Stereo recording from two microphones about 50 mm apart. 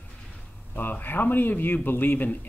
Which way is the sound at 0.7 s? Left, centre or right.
Left.